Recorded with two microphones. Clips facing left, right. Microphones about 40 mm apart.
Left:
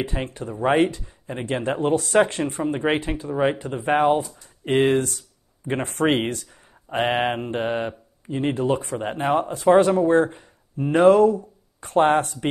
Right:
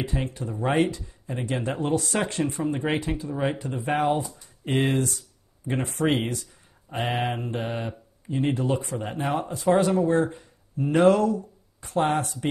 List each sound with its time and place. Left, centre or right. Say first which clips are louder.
0.0 s speech: left 2 dB; left